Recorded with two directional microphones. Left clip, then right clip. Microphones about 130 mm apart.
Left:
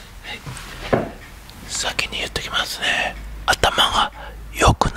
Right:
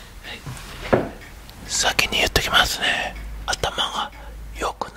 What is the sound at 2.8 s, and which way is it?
Whispering, centre (ahead or behind).